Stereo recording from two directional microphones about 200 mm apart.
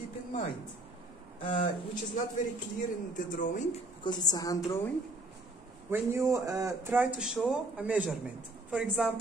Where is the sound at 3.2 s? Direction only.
40° left (ahead or behind).